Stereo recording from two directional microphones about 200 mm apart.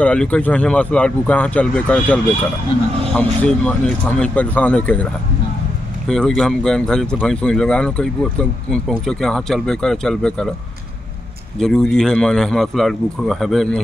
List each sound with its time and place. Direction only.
0.0 s speech: 5° left (ahead or behind)
6.0 s speech: centre (ahead or behind)
11.5 s speech: centre (ahead or behind)